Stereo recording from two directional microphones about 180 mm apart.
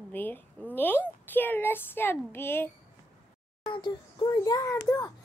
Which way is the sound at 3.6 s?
25° left (ahead or behind).